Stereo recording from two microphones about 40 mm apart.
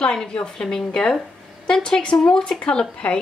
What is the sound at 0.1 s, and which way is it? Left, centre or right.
A woman's voice, left.